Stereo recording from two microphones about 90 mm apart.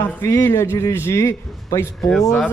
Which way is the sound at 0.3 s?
30° left (ahead or behind).